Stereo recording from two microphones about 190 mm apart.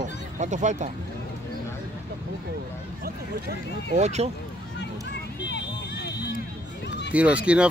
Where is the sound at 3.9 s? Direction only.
35° right (ahead or behind).